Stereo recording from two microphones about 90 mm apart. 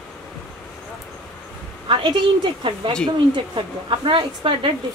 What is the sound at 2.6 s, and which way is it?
Speech, 65° right (ahead or behind).